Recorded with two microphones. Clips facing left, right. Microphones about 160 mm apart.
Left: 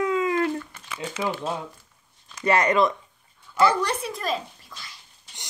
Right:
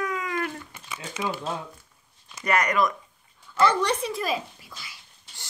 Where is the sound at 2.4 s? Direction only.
25° left (ahead or behind).